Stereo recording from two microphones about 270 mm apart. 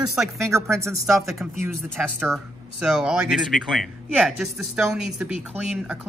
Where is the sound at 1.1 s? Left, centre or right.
Centre.